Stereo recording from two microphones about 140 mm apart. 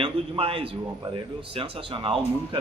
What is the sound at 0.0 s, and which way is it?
Speech, 40° right (ahead or behind).